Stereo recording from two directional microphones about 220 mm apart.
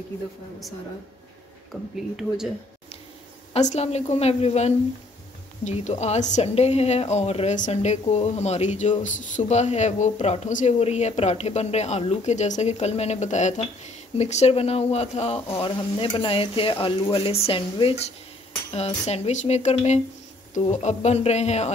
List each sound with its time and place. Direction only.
1.7 s speech: centre (ahead or behind)
3.5 s a woman's voice: 30° left (ahead or behind)